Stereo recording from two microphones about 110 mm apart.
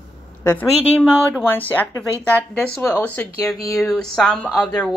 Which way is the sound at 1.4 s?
15° left (ahead or behind).